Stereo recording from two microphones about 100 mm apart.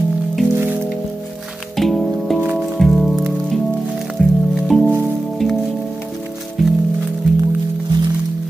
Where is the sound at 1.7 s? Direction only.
Centre (ahead or behind).